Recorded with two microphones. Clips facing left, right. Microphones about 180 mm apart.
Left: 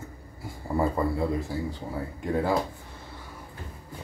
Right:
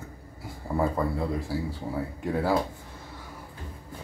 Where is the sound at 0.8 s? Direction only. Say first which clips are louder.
Left 1 dB; centre (ahead or behind).